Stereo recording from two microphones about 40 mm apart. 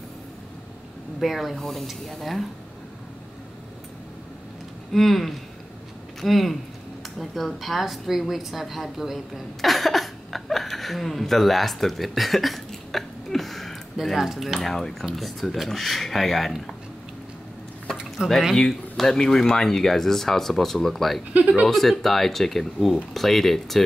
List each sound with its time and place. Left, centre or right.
1.2 s speech: centre
4.9 s a woman's voice: centre
14.1 s dishes: centre
14.7 s speech: centre
18.2 s speech: centre
18.6 s speech: centre
21.3 s speech: right
21.6 s speech: centre